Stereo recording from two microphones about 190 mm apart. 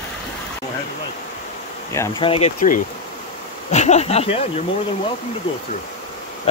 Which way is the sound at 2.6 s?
45° left (ahead or behind).